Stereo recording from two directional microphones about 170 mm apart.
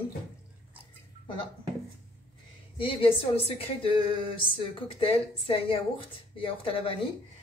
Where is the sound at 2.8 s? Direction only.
30° left (ahead or behind).